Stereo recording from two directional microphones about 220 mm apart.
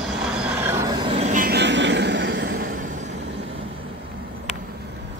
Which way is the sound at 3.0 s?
55° right (ahead or behind).